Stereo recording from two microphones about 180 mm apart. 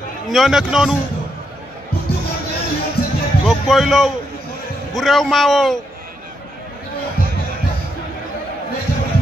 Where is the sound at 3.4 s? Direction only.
Centre (ahead or behind).